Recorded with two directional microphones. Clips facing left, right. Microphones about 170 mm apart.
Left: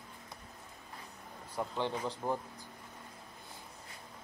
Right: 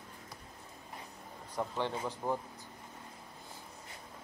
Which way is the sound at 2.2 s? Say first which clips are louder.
Right 1 dB; centre (ahead or behind).